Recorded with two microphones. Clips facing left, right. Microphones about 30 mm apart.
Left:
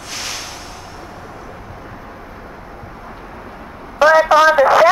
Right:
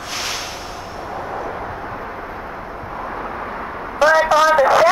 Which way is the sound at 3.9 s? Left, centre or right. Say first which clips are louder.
Left 3 dB; centre.